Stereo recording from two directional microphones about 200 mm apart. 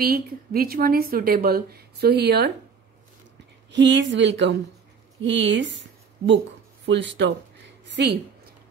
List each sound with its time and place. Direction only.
0.0 s speech: 50° right (ahead or behind)
3.7 s speech: 65° right (ahead or behind)
6.9 s a woman's voice: 60° right (ahead or behind)